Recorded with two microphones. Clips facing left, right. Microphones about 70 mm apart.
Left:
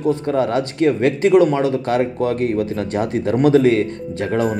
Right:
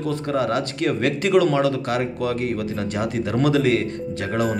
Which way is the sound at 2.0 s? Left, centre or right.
Left.